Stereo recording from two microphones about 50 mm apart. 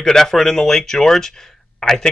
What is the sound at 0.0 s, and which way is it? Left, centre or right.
Speech, centre.